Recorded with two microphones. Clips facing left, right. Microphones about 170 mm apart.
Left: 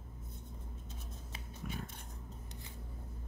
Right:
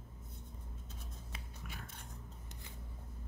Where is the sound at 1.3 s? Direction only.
25° left (ahead or behind).